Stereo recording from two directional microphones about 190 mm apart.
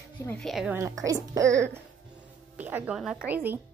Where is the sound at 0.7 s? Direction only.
15° right (ahead or behind).